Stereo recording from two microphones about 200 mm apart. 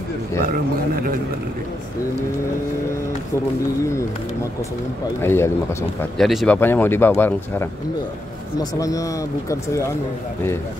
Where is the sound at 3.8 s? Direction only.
15° left (ahead or behind).